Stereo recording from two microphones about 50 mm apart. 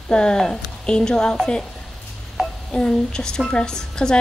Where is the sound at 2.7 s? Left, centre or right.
Centre.